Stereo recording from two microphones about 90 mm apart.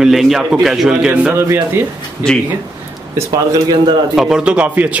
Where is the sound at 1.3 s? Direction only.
25° right (ahead or behind).